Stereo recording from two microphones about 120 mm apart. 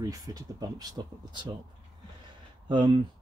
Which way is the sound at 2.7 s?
40° right (ahead or behind).